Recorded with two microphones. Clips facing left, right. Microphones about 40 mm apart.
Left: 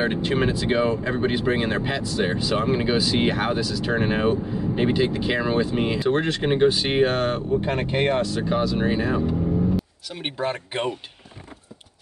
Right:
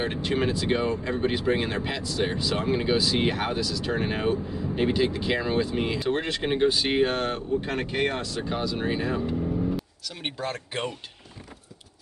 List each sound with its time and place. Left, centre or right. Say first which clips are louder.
0.0 s speech: left 4 dB; centre
7.6 s speech: left 4 dB; left
8.4 s speech: left 6 dB; centre